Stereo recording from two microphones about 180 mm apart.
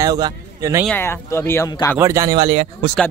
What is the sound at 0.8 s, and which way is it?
Speech, 10° left (ahead or behind).